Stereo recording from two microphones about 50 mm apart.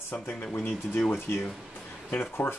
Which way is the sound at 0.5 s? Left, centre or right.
Left.